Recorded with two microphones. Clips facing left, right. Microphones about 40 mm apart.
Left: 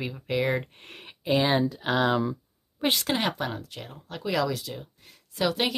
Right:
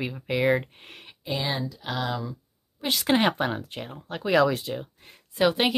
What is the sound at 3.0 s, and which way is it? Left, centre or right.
Speech, right.